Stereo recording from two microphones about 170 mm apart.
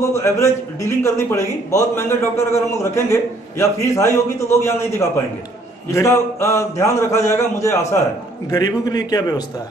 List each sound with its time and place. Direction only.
0.1 s a man's voice: 15° left (ahead or behind)